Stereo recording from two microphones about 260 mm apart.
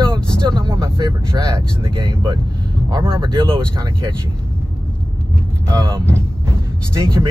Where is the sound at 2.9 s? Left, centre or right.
Centre.